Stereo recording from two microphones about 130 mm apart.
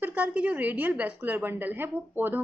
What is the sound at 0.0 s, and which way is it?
A woman's voice, 10° right (ahead or behind).